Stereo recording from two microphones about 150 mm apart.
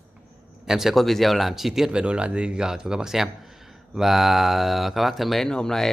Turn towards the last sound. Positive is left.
turn(degrees=5)  # may be behind; listen again after turning